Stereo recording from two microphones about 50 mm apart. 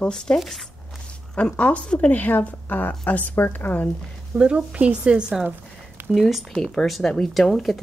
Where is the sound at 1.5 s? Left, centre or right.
Left.